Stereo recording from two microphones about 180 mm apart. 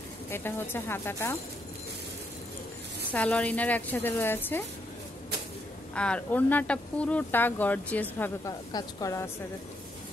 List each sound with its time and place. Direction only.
0.3 s speech: 10° left (ahead or behind)
3.1 s speech: 5° left (ahead or behind)
5.9 s speech: 5° left (ahead or behind)